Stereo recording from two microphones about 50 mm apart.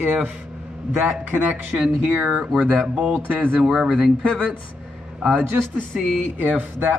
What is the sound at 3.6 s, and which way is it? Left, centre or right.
Speech, centre.